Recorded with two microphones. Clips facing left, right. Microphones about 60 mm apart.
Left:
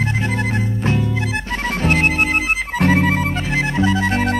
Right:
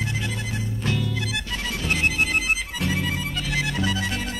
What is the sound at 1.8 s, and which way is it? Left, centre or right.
Music, left.